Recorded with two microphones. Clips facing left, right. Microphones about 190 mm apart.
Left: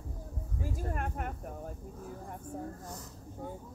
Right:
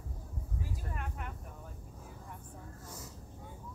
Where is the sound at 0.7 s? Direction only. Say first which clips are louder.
Left 7 dB; 50° left (ahead or behind).